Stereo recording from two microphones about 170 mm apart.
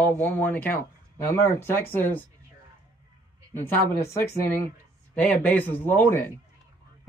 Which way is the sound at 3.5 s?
15° left (ahead or behind).